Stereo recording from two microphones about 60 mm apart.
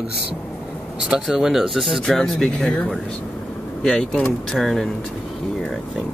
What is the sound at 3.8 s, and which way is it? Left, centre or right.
Speech, centre.